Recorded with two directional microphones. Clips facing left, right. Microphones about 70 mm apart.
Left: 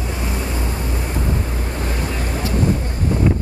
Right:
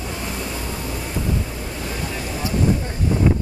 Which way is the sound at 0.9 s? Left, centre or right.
Left.